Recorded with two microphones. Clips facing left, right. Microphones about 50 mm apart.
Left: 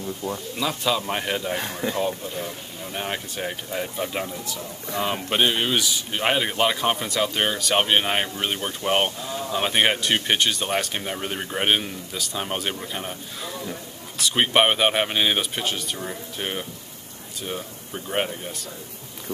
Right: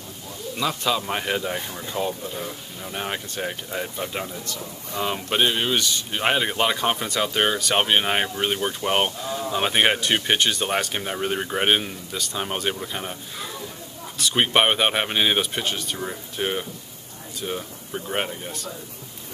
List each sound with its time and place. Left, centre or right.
0.6 s speech: centre
1.7 s speech: left
2.0 s speech: centre
14.1 s speech: centre